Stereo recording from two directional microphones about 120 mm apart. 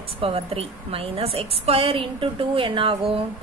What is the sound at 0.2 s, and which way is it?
A woman's voice, 55° right (ahead or behind).